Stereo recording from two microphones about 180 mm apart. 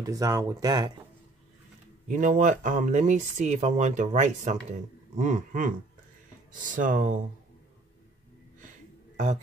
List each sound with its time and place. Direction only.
0.0 s speech: 20° right (ahead or behind)
2.0 s speech: 45° right (ahead or behind)
9.1 s speech: 45° right (ahead or behind)